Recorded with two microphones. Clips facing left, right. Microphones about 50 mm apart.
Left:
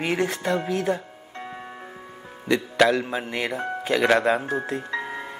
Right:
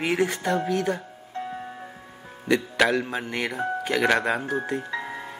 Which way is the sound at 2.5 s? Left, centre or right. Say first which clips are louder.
Left 2 dB; centre.